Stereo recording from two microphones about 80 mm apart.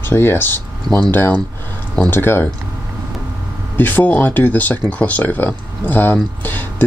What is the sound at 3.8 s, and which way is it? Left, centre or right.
Speech, left.